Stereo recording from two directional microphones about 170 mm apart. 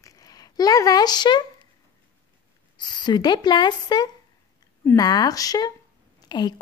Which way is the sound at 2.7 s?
25° left (ahead or behind).